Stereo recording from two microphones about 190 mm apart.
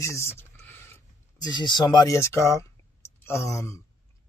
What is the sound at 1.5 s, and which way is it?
Speech, 25° left (ahead or behind).